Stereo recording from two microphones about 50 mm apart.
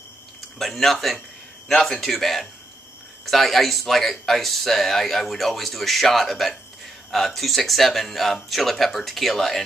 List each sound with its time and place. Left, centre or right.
0.6 s speech: centre